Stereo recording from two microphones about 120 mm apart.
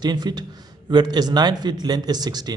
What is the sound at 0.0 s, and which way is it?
A man's voice, 35° right (ahead or behind).